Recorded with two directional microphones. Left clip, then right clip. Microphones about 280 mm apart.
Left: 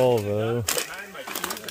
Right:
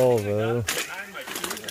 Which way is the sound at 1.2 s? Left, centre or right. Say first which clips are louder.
Left 3 dB; left.